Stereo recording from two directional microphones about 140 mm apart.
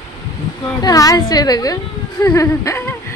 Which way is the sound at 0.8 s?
25° left (ahead or behind).